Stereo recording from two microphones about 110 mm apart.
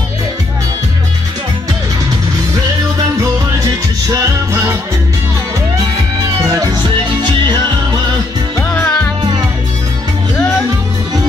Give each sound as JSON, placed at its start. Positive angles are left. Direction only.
{"t": 7.2, "sound": "music", "side_deg": -45}
{"t": 8.5, "sound": "music", "side_deg": 20}
{"t": 9.2, "sound": "music", "side_deg": -40}